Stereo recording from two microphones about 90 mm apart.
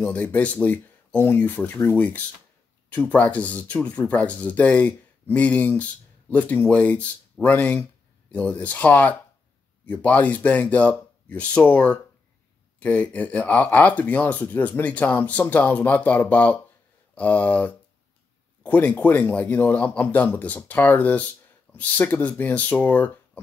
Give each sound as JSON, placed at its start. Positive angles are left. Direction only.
{"t": 0.0, "sound": "speech", "side_deg": 15}